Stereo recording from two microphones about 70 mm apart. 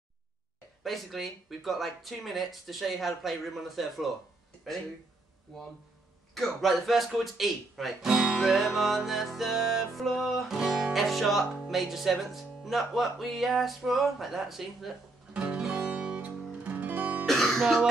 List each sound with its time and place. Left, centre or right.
0.8 s speech: centre
5.5 s speech: centre
15.3 s music: centre
17.3 s music: centre